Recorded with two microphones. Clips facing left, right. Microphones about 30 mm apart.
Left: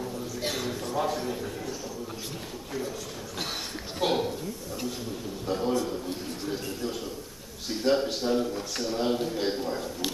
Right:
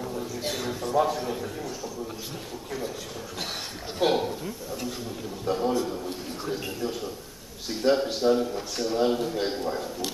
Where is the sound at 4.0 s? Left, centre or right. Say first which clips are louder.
Right 3 dB; centre.